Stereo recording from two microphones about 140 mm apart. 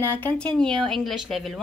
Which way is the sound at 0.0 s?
15° left (ahead or behind).